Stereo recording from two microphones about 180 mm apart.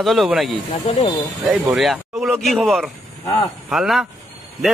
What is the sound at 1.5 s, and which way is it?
A man's voice, centre (ahead or behind).